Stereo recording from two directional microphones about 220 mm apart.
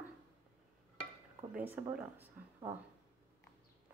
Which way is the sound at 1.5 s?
10° right (ahead or behind).